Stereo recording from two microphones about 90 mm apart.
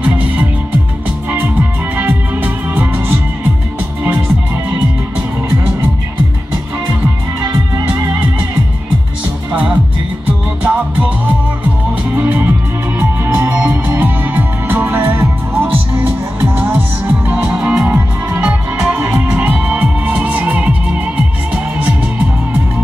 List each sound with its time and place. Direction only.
2.0 s music: 20° right (ahead or behind)
7.4 s music: 30° right (ahead or behind)
9.5 s music: 10° right (ahead or behind)
13.5 s music: 15° right (ahead or behind)
18.9 s music: 25° right (ahead or behind)